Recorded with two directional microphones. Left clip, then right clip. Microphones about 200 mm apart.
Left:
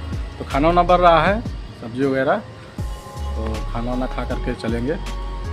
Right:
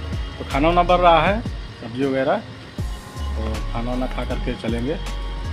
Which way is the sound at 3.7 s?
15° left (ahead or behind).